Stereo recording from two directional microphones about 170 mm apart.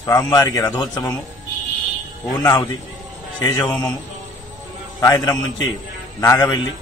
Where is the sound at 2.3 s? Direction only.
25° left (ahead or behind).